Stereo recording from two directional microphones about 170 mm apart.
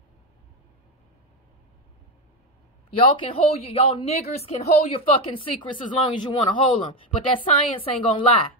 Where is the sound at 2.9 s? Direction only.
30° left (ahead or behind).